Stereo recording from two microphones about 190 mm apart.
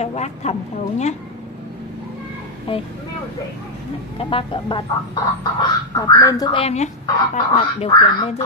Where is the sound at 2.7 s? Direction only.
30° left (ahead or behind).